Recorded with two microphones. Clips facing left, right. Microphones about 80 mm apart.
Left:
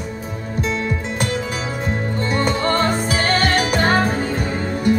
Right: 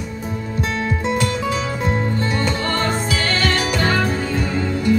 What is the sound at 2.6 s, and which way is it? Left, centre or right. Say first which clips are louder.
Music: left 3 dB; left.